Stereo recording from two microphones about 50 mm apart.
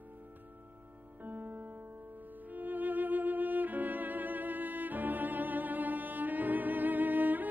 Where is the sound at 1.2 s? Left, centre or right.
Right.